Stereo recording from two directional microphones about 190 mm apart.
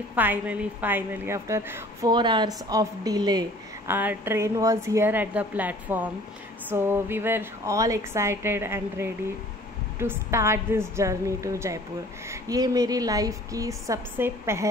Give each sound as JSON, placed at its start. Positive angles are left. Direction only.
{"t": 0.1, "sound": "a woman's voice", "side_deg": -10}